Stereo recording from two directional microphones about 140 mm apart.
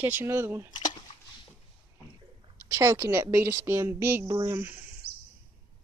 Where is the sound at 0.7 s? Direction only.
30° left (ahead or behind).